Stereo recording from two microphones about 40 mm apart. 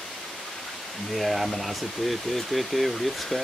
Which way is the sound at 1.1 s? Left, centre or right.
Centre.